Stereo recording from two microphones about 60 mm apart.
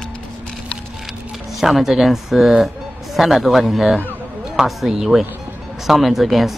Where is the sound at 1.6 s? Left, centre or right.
Centre.